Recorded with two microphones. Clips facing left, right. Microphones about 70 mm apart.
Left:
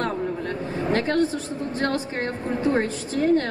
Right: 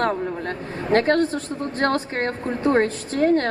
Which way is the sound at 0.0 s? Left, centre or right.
Right.